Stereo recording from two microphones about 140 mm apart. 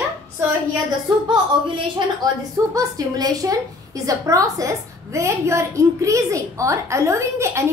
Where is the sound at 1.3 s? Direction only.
35° right (ahead or behind).